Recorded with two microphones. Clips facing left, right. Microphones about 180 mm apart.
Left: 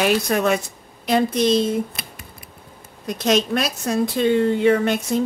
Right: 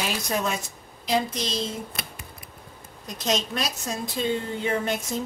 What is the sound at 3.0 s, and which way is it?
Speech, 65° left (ahead or behind).